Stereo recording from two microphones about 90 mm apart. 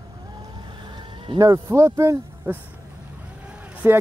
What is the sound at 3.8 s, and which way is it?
Speech, 25° right (ahead or behind).